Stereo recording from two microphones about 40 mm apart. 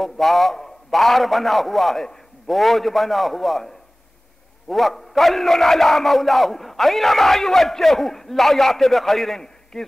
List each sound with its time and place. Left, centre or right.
0.0 s a man's voice: centre